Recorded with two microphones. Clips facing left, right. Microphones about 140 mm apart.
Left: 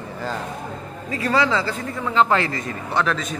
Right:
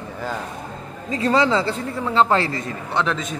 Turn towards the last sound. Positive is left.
turn(degrees=-20)  # may be behind; listen again after turning